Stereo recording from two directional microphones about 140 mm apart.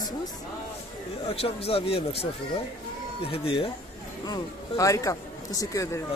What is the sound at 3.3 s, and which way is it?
Speech, 40° left (ahead or behind).